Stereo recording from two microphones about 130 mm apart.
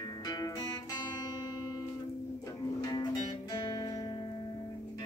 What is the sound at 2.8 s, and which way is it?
Music, 30° left (ahead or behind).